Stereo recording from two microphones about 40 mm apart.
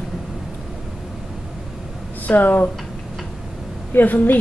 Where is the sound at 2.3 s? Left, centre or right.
Left.